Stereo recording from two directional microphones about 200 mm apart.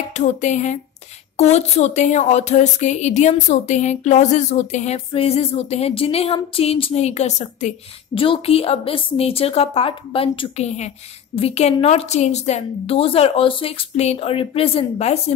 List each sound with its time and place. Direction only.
0.1 s a woman's voice: 35° left (ahead or behind)